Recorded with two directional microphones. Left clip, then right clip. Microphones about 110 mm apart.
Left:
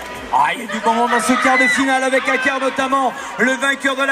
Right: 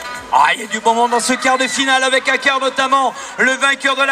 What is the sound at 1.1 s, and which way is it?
A man's voice, 45° right (ahead or behind).